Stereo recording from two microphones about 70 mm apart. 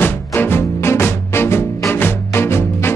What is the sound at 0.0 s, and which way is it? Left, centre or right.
Music, left.